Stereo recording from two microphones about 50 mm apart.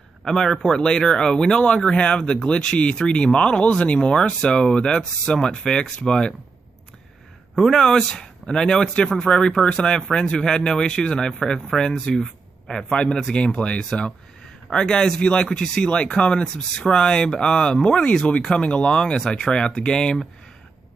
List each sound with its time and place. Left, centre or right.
0.2 s speech: centre
7.5 s speech: centre
12.9 s speech: left